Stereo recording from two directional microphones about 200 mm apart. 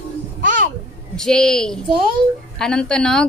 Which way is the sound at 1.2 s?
5° left (ahead or behind).